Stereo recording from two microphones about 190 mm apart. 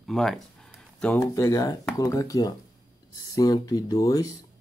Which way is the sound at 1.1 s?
15° left (ahead or behind).